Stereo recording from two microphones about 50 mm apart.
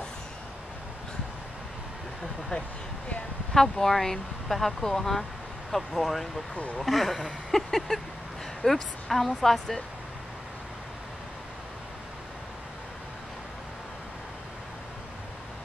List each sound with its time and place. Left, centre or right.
2.5 s speech: centre
3.5 s speech: centre
6.5 s speech: left
6.8 s speech: centre